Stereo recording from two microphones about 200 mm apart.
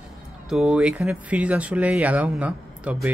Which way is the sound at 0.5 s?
5° right (ahead or behind).